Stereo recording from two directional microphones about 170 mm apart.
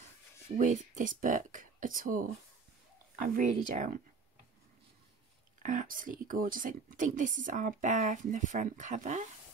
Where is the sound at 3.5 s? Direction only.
50° right (ahead or behind).